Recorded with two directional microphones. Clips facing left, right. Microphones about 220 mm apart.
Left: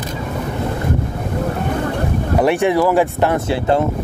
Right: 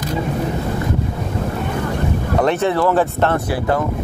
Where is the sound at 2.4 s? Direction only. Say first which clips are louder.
Left 2 dB; 10° left (ahead or behind).